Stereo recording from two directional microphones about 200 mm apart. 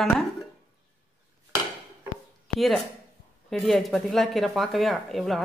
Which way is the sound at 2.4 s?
Centre (ahead or behind).